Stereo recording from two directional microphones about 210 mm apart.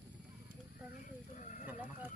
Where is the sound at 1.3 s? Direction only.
35° left (ahead or behind).